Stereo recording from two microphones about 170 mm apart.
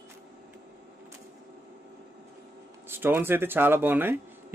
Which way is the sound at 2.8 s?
15° right (ahead or behind).